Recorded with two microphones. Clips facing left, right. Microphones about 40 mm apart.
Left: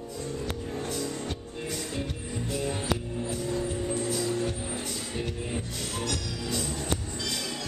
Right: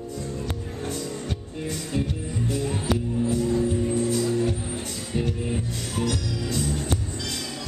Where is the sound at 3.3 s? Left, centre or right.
Centre.